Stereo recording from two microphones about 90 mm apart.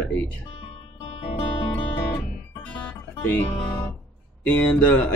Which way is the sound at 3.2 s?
25° left (ahead or behind).